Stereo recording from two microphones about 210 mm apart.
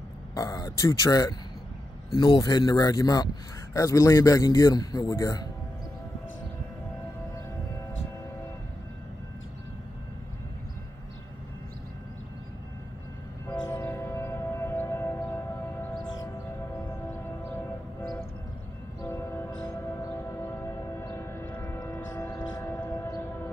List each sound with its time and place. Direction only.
0.3 s a man's voice: 15° left (ahead or behind)
13.5 s train: 10° left (ahead or behind)
19.0 s music: 10° left (ahead or behind)
21.0 s a sound: 10° left (ahead or behind)